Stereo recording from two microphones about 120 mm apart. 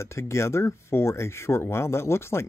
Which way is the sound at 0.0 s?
25° left (ahead or behind).